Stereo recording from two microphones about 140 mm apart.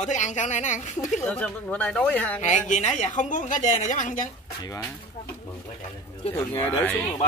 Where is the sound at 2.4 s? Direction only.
60° left (ahead or behind).